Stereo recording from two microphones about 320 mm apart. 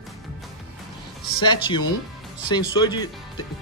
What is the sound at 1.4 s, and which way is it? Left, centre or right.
Speech, centre.